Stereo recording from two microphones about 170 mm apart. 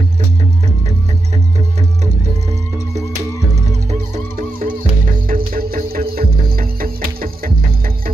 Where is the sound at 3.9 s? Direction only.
45° right (ahead or behind).